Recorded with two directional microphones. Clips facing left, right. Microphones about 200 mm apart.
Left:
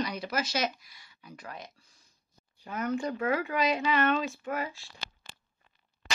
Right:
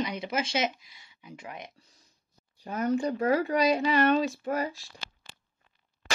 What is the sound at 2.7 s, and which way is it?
Speech, 35° right (ahead or behind).